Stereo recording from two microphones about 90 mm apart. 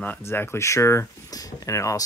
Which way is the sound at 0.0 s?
25° left (ahead or behind).